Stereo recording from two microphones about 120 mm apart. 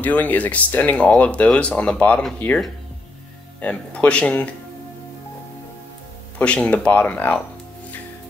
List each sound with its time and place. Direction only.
0.0 s speech: 15° left (ahead or behind)
3.6 s speech: 10° left (ahead or behind)
6.3 s speech: 10° left (ahead or behind)